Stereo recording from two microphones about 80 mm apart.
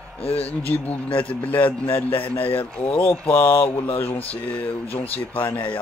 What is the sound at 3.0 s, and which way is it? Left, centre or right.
A man's voice, left.